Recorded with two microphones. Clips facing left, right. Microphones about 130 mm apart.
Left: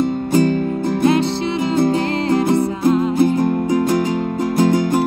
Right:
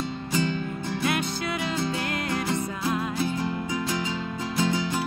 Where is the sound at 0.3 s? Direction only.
50° left (ahead or behind).